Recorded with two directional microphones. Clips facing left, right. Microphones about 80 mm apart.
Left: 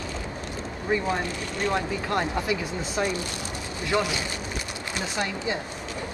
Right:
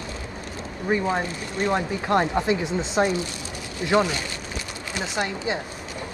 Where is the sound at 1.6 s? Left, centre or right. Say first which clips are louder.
Right 3 dB; right.